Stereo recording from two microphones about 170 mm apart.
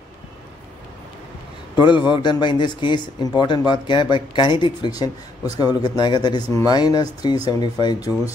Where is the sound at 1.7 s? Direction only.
25° left (ahead or behind).